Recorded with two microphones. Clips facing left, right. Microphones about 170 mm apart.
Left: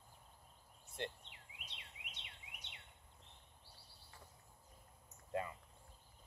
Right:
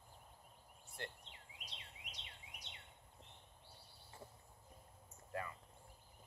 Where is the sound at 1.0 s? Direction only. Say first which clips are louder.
Left 5 dB; 20° left (ahead or behind).